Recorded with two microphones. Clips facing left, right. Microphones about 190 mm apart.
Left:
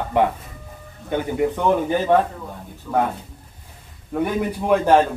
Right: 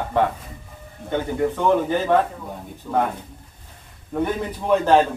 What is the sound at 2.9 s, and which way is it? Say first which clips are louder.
Speech: left 1 dB; 15° right (ahead or behind).